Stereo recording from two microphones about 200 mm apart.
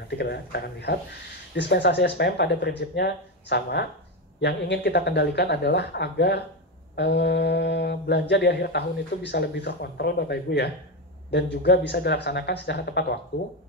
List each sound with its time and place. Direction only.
0.1 s mantra: 55° left (ahead or behind)